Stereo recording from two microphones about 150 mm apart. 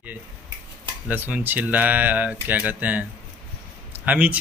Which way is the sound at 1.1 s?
10° right (ahead or behind).